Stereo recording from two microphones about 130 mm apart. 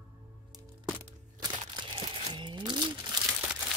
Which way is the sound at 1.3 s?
40° right (ahead or behind).